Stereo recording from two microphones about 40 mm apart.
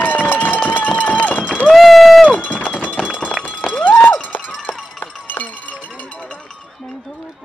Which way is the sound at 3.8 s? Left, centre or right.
Left.